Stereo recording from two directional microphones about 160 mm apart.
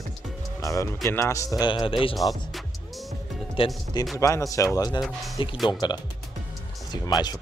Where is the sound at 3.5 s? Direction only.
35° left (ahead or behind).